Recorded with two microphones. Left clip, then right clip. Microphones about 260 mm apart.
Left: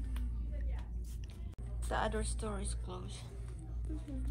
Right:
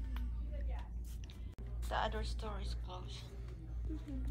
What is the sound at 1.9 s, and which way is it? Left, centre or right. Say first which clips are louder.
A woman's voice: left 2 dB; centre.